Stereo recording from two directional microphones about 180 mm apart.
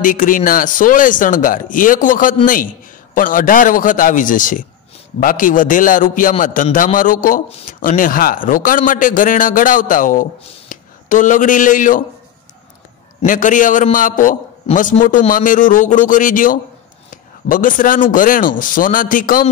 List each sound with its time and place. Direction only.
0.0 s speech: 45° left (ahead or behind)
13.2 s speech: 45° left (ahead or behind)